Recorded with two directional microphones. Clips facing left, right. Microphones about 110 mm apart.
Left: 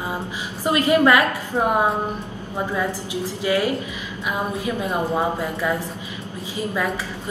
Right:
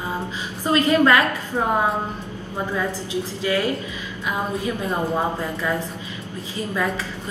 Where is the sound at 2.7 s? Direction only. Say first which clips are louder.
Right 2 dB; 15° left (ahead or behind).